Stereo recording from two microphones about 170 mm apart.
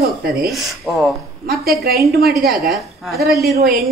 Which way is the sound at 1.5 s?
65° right (ahead or behind).